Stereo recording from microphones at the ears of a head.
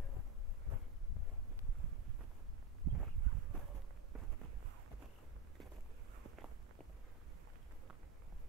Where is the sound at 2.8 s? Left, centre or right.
Right.